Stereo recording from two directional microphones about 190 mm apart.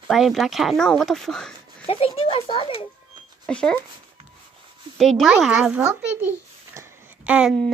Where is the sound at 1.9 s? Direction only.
30° left (ahead or behind).